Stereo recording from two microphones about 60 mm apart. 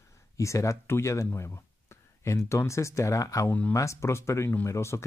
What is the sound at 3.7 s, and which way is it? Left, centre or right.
Speech, left.